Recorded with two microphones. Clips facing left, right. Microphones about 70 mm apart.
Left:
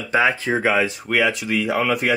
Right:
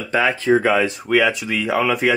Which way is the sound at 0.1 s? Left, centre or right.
Centre.